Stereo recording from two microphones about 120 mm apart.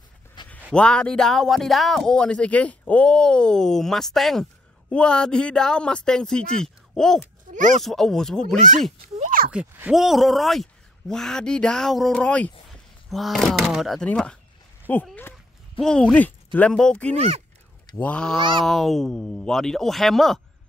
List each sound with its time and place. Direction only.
0.4 s a sound: 40° left (ahead or behind)
0.7 s speech: 5° left (ahead or behind)
7.5 s speech: 90° right
7.8 s speech: centre (ahead or behind)
9.5 s speech: 10° right (ahead or behind); by 17.1 s 5° left (ahead or behind)
17.1 s speech: 60° right (ahead or behind)
17.9 s speech: 10° left (ahead or behind)
18.4 s speech: 40° right (ahead or behind)
18.7 s speech: centre (ahead or behind)